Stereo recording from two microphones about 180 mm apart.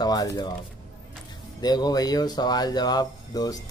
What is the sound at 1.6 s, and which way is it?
Speech, 20° left (ahead or behind).